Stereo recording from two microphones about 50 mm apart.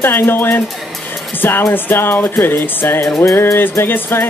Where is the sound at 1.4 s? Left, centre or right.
Left.